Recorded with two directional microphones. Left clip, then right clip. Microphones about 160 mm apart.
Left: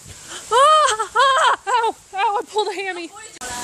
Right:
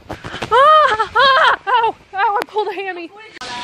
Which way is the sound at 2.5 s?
30° left (ahead or behind).